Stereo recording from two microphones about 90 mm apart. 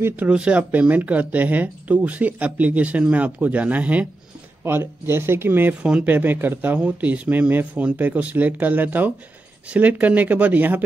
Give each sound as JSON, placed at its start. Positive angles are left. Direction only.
{"t": 0.1, "sound": "speech", "side_deg": -15}